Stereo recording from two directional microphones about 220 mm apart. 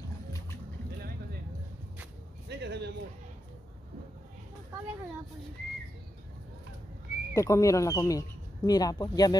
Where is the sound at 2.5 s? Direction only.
50° right (ahead or behind).